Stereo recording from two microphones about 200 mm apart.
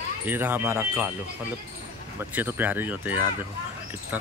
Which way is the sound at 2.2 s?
10° right (ahead or behind).